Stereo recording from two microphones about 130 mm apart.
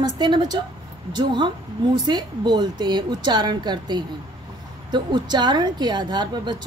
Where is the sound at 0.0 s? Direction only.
35° right (ahead or behind).